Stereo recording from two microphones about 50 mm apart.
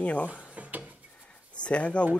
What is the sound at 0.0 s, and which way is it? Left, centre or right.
Speech, left.